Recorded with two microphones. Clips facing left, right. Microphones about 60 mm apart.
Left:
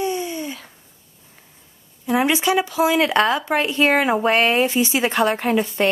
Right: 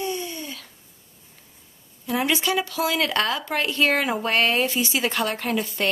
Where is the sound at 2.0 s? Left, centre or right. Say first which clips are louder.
Left 5 dB; left.